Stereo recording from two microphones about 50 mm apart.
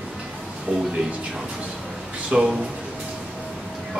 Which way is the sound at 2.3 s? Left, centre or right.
Right.